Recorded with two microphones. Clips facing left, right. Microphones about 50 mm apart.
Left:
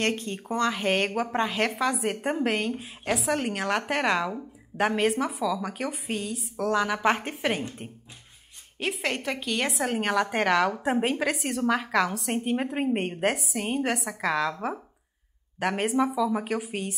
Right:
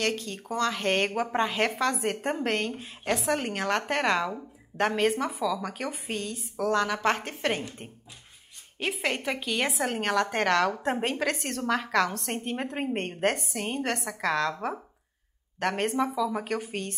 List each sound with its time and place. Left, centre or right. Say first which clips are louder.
0.0 s speech: left 2 dB; left
0.7 s a woman's voice: even; centre
8.7 s a woman's voice: even; centre